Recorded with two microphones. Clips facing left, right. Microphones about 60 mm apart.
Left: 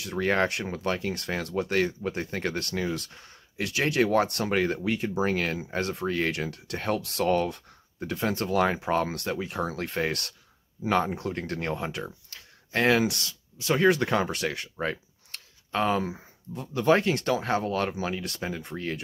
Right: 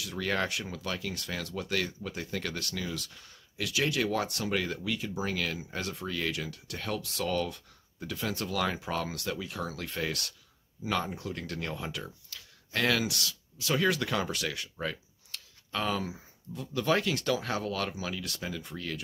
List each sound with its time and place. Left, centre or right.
0.0 s speech: left